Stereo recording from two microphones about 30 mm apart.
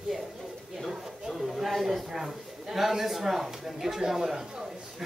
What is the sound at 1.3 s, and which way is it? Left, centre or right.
A man's voice, centre.